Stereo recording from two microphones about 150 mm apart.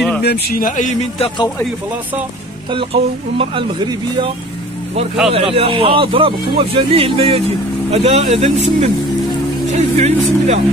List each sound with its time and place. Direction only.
0.2 s a man's voice: 90° left; by 0.9 s 60° left (ahead or behind)
2.7 s speech: 35° right (ahead or behind)
5.3 s speech: 40° right (ahead or behind)